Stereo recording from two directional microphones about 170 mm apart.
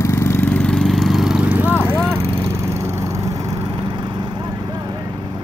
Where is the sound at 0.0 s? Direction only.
15° left (ahead or behind); by 4.9 s 25° right (ahead or behind).